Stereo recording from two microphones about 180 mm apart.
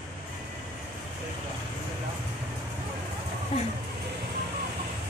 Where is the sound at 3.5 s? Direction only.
35° left (ahead or behind).